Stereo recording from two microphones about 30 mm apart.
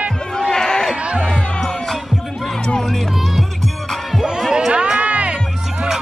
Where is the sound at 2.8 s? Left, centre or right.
Centre.